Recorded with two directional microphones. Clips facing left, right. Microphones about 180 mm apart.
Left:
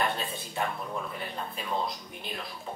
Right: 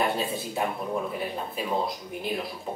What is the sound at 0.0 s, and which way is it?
Speech, 5° right (ahead or behind).